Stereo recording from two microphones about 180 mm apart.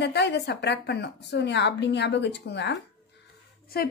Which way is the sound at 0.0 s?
70° left (ahead or behind).